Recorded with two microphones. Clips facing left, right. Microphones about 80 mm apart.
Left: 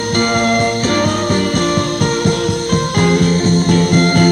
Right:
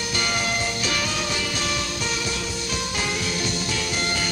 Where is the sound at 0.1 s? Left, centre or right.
Left.